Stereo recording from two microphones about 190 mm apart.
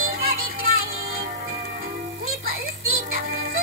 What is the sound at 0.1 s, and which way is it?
Music, 50° right (ahead or behind).